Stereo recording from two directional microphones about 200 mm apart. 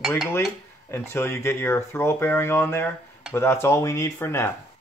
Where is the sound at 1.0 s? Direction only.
10° left (ahead or behind).